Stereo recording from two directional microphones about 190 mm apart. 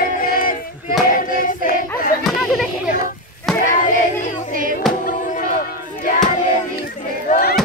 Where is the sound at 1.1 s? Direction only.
45° left (ahead or behind).